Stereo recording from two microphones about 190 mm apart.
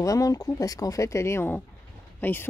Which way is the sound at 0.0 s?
15° left (ahead or behind).